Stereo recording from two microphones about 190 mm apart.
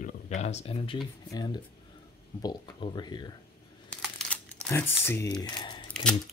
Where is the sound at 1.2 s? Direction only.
20° left (ahead or behind).